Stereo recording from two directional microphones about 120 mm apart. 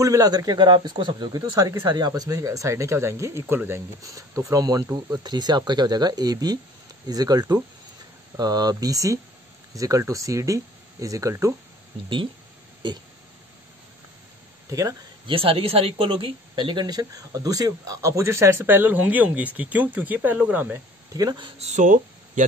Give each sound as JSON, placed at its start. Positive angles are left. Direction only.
{"t": 0.0, "sound": "speech", "side_deg": -30}
{"t": 14.7, "sound": "speech", "side_deg": -30}
{"t": 15.2, "sound": "speech", "side_deg": -50}
{"t": 21.1, "sound": "speech", "side_deg": -35}
{"t": 21.5, "sound": "speech", "side_deg": -75}